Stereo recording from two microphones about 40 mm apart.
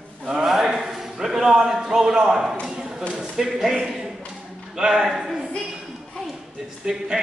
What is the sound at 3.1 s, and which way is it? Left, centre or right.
A man's voice, centre.